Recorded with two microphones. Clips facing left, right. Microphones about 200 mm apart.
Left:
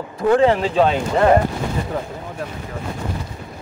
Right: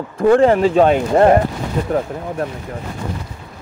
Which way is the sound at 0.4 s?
45° right (ahead or behind).